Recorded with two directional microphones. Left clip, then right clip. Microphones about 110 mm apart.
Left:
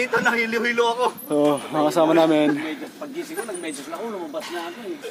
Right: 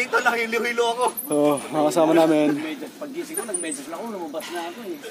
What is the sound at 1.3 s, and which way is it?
Speech, centre (ahead or behind).